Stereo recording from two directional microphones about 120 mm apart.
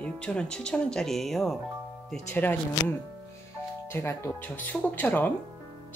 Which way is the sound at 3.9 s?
20° left (ahead or behind).